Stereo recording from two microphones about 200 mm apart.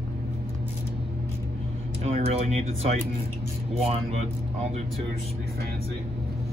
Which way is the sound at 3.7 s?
30° right (ahead or behind).